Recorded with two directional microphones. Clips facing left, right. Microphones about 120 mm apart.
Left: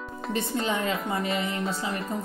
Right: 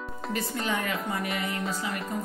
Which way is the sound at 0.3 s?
25° left (ahead or behind).